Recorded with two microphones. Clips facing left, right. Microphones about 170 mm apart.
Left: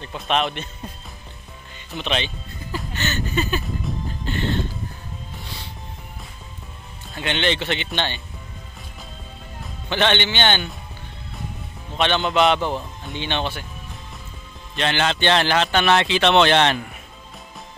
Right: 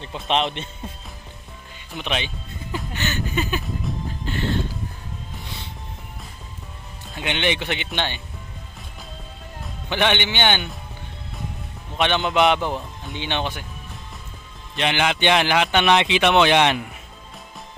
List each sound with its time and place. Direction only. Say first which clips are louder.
0.0 s a man's voice: even; 25° right (ahead or behind)
2.0 s speech: left 2 dB; 10° right (ahead or behind)
2.9 s a sound: left 1 dB; 10° right (ahead or behind)
7.2 s speech: left 1 dB; 15° right (ahead or behind)
9.8 s speech: left 1 dB; 15° right (ahead or behind)
12.0 s speech: even; 15° right (ahead or behind)
14.8 s speech: even; 15° right (ahead or behind)